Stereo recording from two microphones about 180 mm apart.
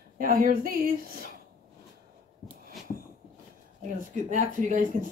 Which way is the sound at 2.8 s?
Centre (ahead or behind).